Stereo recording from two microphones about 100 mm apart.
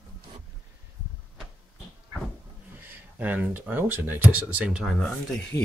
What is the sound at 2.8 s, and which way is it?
Speech, 15° right (ahead or behind).